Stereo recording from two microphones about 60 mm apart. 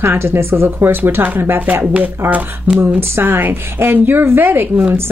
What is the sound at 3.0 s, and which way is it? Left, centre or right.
A woman's voice, right.